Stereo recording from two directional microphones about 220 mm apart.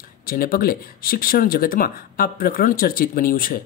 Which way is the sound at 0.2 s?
40° left (ahead or behind).